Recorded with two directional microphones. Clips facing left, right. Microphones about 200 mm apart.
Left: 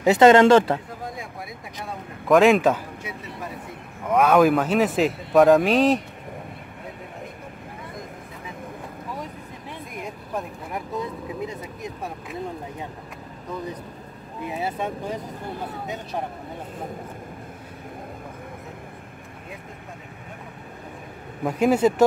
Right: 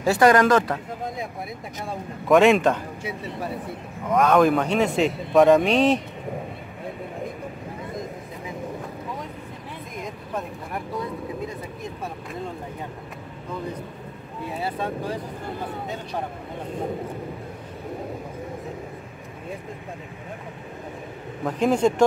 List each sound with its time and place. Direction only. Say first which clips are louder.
0.0 s speech: left 4 dB; 20° left (ahead or behind)
2.2 s speech: even; centre (ahead or behind)
3.0 s a sound: right 4 dB; 30° right (ahead or behind)
4.1 s speech: left 1 dB; 5° left (ahead or behind)
14.5 s speech: even; 20° left (ahead or behind)
21.5 s speech: left 1 dB; 5° left (ahead or behind)